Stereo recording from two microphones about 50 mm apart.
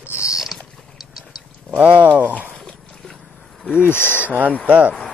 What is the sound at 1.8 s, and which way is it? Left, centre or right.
Speech, right.